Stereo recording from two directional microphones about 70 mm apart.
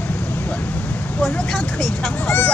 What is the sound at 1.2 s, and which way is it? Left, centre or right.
Vehicle, centre.